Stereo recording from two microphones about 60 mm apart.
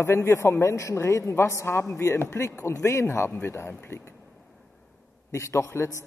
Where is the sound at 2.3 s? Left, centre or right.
Left.